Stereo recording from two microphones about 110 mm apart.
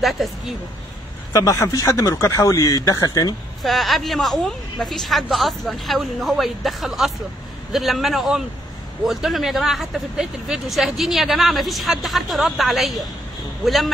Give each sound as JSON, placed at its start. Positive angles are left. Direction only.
{"t": 0.0, "sound": "speech", "side_deg": 0}
{"t": 1.3, "sound": "a man's voice", "side_deg": 30}
{"t": 3.6, "sound": "speech", "side_deg": 0}